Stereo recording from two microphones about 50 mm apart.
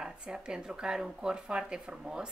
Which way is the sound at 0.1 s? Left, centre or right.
Centre.